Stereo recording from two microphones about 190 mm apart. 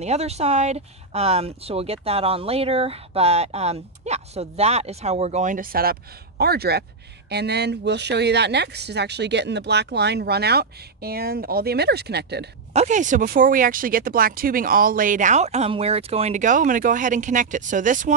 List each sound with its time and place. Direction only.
0.0 s speech: 35° right (ahead or behind); by 12.4 s 60° right (ahead or behind)
12.7 s speech: 40° right (ahead or behind)